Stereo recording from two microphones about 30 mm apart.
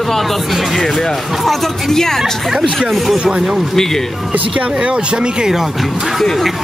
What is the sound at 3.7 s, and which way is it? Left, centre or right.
Speech, centre.